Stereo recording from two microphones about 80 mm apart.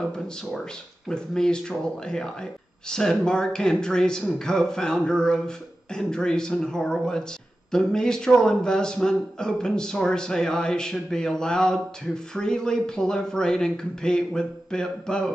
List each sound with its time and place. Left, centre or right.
1.0 s a man's voice: centre